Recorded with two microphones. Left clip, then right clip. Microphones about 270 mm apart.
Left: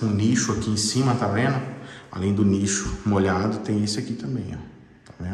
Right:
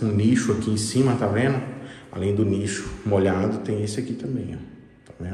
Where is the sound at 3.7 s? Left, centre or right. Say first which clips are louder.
Even; left.